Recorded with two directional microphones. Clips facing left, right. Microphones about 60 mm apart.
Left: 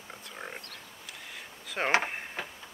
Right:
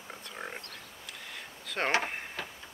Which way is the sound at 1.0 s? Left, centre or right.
Centre.